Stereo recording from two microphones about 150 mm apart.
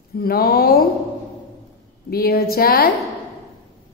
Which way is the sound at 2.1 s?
90° left.